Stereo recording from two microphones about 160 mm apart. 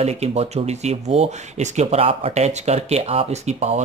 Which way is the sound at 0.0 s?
40° right (ahead or behind).